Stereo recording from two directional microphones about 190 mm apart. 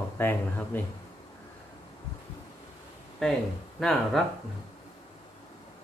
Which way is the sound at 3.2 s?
Centre (ahead or behind).